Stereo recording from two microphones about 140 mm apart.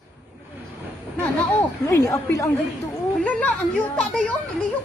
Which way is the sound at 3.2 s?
10° left (ahead or behind).